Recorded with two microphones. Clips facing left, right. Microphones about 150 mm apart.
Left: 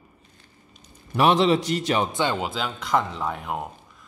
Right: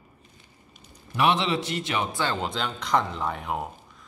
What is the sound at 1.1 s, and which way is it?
Speech, 40° left (ahead or behind).